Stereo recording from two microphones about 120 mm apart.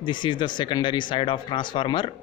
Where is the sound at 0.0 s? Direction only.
40° left (ahead or behind).